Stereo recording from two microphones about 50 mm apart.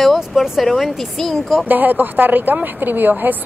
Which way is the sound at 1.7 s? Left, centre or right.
Right.